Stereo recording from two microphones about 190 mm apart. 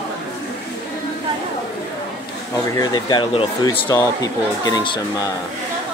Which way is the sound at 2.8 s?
20° left (ahead or behind).